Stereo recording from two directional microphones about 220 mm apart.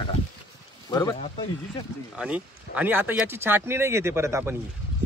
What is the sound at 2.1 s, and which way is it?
Speech, 5° right (ahead or behind).